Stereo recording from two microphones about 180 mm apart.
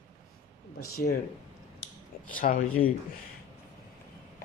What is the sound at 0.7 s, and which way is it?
Speech, 55° left (ahead or behind).